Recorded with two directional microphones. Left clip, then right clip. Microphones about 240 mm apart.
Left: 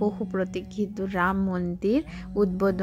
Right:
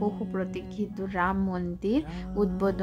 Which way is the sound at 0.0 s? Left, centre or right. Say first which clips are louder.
Left 4 dB; centre.